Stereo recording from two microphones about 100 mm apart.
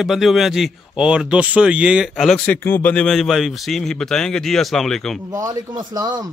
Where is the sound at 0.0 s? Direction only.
5° right (ahead or behind); by 3.1 s 15° left (ahead or behind).